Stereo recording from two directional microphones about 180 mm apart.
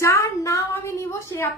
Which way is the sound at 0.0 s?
15° left (ahead or behind).